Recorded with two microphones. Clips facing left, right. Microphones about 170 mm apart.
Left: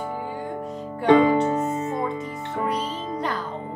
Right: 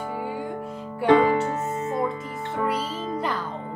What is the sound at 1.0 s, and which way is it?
Music, 20° left (ahead or behind).